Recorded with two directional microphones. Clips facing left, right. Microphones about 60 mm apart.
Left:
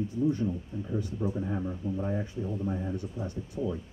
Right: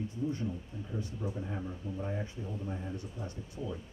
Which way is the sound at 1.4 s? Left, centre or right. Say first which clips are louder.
Left 7 dB; centre.